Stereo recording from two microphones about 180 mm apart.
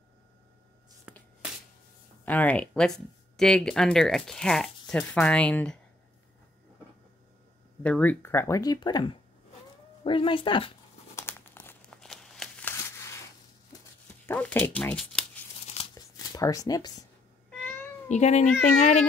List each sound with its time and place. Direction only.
1.1 s a sound: 5° right (ahead or behind)
2.2 s speech: 10° left (ahead or behind)
7.8 s speech: 10° left (ahead or behind); by 10.7 s 30° left (ahead or behind)
11.1 s crumpling: 10° left (ahead or behind)
14.2 s speech: 10° left (ahead or behind)
15.6 s a sound: 35° left (ahead or behind)
16.2 s speech: 20° left (ahead or behind)
17.5 s cat: 5° left (ahead or behind)
18.0 s speech: 40° left (ahead or behind)